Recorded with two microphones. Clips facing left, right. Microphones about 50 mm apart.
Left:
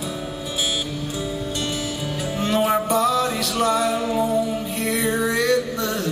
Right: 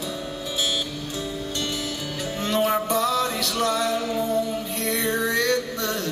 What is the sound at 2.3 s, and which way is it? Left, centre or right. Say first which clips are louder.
Music: left 2 dB; centre.